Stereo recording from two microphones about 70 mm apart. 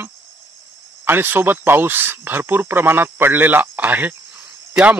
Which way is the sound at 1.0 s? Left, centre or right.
Right.